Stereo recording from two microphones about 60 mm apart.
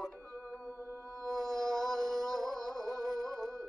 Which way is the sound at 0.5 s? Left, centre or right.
Right.